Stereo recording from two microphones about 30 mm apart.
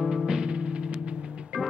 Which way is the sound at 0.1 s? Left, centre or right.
Right.